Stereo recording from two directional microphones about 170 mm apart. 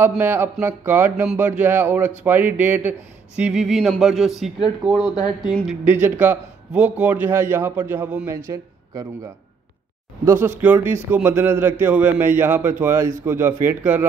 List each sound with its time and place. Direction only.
0.0 s speech: 10° right (ahead or behind)